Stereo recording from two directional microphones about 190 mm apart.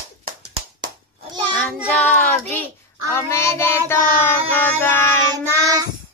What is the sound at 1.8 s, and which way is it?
Child singing, 5° left (ahead or behind).